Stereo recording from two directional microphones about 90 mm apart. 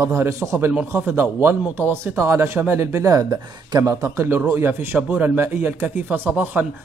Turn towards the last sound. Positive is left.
turn(degrees=-20)  # may be behind; listen again after turning